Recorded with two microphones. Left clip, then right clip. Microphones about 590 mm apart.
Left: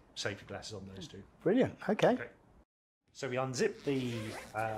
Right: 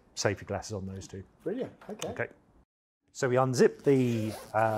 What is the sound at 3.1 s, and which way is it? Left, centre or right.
Speech, right.